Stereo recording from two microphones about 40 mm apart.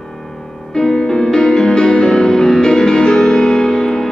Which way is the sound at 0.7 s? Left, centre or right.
Centre.